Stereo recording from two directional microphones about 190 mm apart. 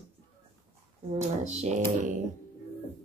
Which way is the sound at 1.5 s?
35° right (ahead or behind).